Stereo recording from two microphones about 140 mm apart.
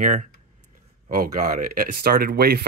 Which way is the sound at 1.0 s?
70° right (ahead or behind).